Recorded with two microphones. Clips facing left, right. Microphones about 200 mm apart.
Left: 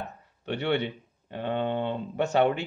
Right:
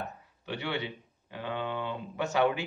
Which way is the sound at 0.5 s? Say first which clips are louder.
Left 7 dB; 60° left (ahead or behind).